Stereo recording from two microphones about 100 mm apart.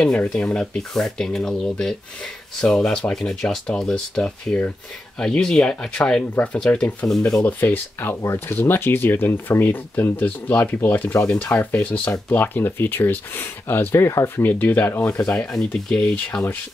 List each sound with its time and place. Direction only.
0.0 s speech: 10° left (ahead or behind)
7.4 s speech: 20° left (ahead or behind)